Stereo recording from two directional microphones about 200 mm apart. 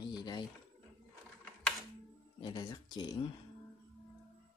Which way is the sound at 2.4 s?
20° left (ahead or behind).